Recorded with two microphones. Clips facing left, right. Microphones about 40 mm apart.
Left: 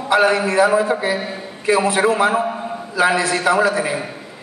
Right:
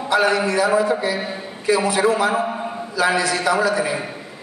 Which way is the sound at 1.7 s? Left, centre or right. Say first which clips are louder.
Left 2 dB; left.